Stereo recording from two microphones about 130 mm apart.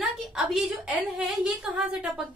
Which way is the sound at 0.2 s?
5° right (ahead or behind).